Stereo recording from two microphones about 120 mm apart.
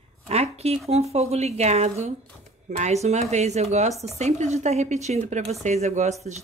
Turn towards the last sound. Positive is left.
turn(degrees=-70)  # may be behind; listen again after turning